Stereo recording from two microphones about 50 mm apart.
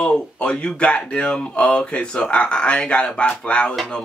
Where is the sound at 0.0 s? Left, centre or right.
Centre.